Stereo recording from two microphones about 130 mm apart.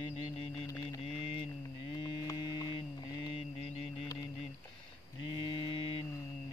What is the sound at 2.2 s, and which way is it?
Hum, 30° left (ahead or behind).